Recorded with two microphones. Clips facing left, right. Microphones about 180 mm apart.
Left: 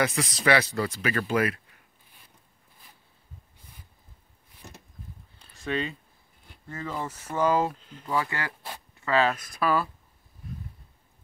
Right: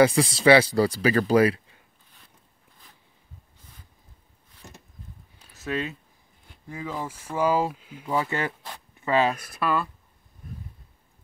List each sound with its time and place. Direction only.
0.0 s speech: 30° right (ahead or behind)
5.4 s a sound: 5° right (ahead or behind)
6.7 s speech: 10° right (ahead or behind)
8.1 s speech: 20° right (ahead or behind)
9.5 s speech: centre (ahead or behind)